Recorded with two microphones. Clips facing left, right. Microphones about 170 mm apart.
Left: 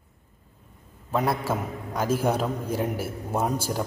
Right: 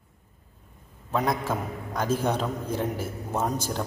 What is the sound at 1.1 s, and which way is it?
A man's voice, 5° left (ahead or behind).